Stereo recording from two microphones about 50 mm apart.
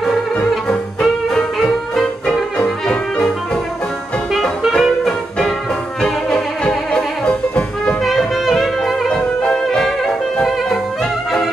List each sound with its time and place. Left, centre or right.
1.3 s music: centre
2.6 s brass instrument: centre
4.3 s music: centre
8.0 s music: centre
9.1 s brass instrument: centre